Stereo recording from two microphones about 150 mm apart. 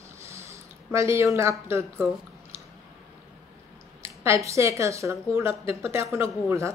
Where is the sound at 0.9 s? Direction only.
20° right (ahead or behind).